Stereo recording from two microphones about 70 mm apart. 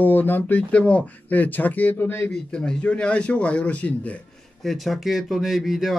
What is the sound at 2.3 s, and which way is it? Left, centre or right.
A man's voice, centre.